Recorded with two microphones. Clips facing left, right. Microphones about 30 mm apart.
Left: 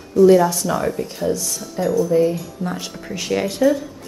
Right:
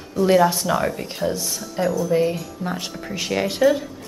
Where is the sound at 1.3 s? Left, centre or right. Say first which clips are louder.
Left 3 dB; right.